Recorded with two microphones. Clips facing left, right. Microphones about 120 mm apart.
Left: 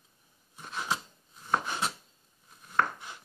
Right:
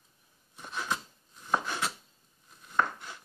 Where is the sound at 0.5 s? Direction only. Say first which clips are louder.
Left 1 dB; 5° left (ahead or behind).